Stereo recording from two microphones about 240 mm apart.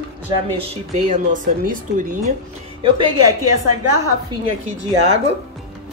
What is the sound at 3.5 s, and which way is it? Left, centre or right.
Speech, right.